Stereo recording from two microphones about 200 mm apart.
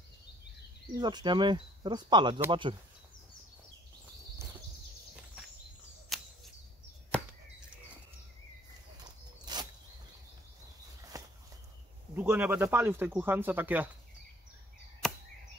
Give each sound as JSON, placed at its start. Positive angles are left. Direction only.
{"t": 0.9, "sound": "speech", "side_deg": -20}
{"t": 6.1, "sound": "a sound", "side_deg": 0}
{"t": 7.1, "sound": "chop", "side_deg": 5}
{"t": 9.0, "sound": "a sound", "side_deg": -20}
{"t": 11.1, "sound": "walk", "side_deg": -15}
{"t": 12.2, "sound": "speech", "side_deg": -10}
{"t": 15.0, "sound": "chop", "side_deg": 5}